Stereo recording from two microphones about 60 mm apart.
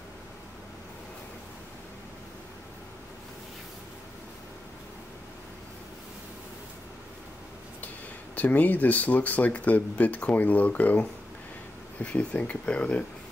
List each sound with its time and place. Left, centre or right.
8.4 s speech: left